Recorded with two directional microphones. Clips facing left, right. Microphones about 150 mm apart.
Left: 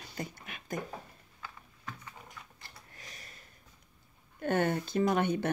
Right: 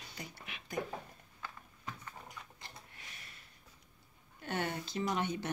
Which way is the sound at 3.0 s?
40° left (ahead or behind).